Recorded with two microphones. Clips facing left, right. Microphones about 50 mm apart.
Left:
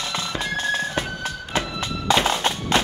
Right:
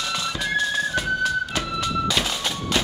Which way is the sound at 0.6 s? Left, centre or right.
Left.